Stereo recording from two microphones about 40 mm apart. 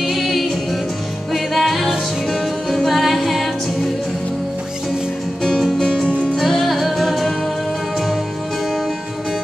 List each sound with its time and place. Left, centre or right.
0.0 s music: centre
5.8 s music: centre
6.3 s music: centre